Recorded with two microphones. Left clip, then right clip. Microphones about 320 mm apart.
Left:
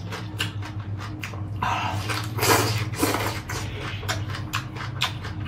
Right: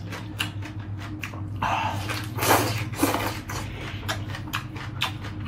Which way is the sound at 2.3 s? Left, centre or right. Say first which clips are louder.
Even; centre.